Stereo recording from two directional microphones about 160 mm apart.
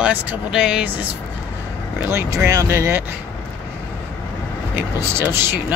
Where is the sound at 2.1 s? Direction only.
20° right (ahead or behind).